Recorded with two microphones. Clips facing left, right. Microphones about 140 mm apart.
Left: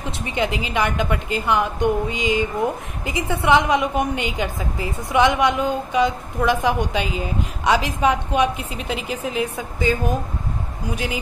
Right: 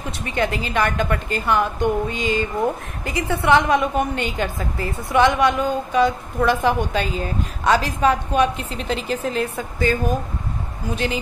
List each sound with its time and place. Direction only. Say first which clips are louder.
0.2 s a woman's voice: right 1 dB; 15° left (ahead or behind)